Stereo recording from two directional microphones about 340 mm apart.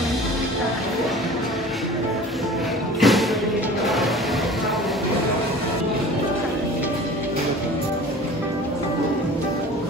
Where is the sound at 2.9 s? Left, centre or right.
Centre.